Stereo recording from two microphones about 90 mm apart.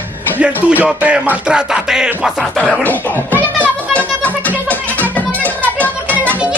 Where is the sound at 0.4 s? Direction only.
15° right (ahead or behind).